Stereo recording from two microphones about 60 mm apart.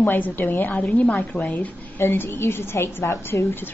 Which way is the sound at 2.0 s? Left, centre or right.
Left.